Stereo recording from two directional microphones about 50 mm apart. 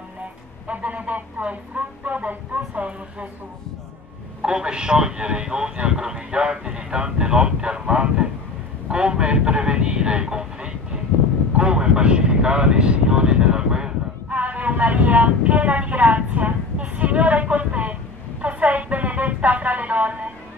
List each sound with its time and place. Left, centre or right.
0.7 s speech: right
4.4 s speech: centre
14.3 s vehicle: right
17.0 s speech: right
18.4 s a sound: right